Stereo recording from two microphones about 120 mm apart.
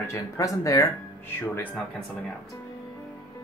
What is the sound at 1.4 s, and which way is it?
Speech, 15° left (ahead or behind).